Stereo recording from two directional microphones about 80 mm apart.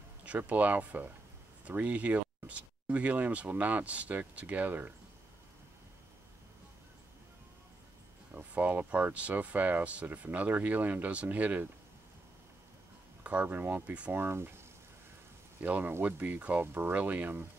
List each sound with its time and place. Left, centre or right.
0.2 s speech: centre
8.4 s speech: right
13.2 s speech: centre
15.6 s speech: right